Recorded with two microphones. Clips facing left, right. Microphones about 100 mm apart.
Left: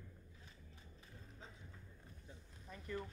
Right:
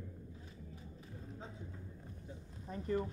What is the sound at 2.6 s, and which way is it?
Speech, 30° right (ahead or behind).